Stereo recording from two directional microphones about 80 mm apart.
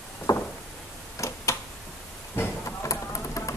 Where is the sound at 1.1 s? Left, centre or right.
Left.